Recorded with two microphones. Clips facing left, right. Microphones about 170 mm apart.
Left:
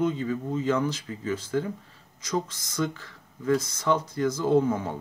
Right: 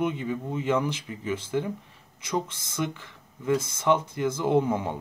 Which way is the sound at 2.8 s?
15° right (ahead or behind).